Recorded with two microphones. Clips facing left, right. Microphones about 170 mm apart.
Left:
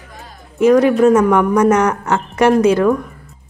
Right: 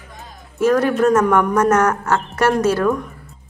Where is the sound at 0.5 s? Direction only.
15° left (ahead or behind).